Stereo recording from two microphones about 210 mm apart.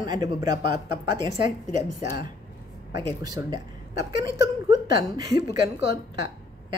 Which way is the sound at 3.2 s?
15° right (ahead or behind).